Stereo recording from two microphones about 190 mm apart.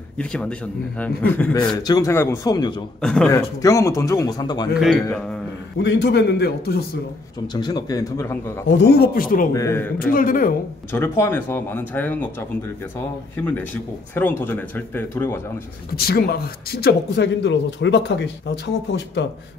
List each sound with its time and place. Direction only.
0.2 s speech: 5° left (ahead or behind)
1.8 s speech: 20° left (ahead or behind)
3.0 s a man's voice: 5° left (ahead or behind)
3.3 s speech: 15° left (ahead or behind)
5.0 s a man's voice: 5° left (ahead or behind)
5.8 s speech: 65° left (ahead or behind)
7.5 s speech: 20° left (ahead or behind)
8.6 s speech: 60° left (ahead or behind)
9.5 s speech: 15° left (ahead or behind)
10.1 s speech: 45° left (ahead or behind)
10.9 s speech: 15° left (ahead or behind)
16.0 s speech: 55° left (ahead or behind)